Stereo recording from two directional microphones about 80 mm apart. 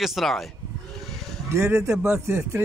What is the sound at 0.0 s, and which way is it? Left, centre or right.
Speech, centre.